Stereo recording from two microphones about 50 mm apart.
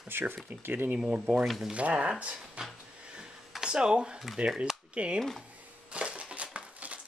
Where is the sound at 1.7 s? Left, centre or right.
Right.